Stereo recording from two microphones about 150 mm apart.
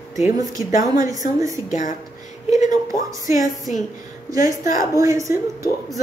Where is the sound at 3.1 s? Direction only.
20° right (ahead or behind).